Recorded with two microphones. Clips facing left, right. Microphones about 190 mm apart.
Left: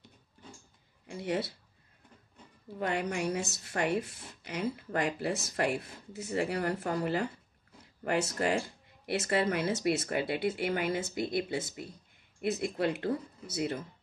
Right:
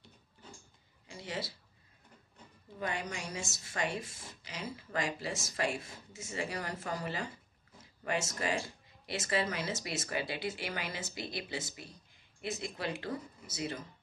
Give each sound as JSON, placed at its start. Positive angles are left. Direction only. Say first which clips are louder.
{"t": 1.0, "sound": "speech", "louder": "left 8 dB", "side_deg": 60}
{"t": 2.8, "sound": "speech", "louder": "left 7 dB", "side_deg": 60}